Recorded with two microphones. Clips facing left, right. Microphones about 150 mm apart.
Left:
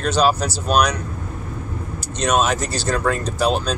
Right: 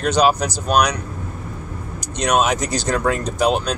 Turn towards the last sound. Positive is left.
turn(degrees=-15)  # may be behind; listen again after turning